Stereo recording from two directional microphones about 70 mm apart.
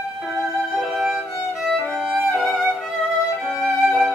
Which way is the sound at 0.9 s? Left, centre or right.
Centre.